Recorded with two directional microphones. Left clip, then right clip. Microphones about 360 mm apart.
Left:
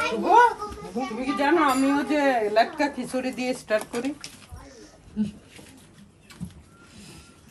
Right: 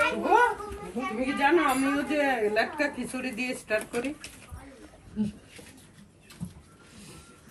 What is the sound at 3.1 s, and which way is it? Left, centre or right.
Speech, left.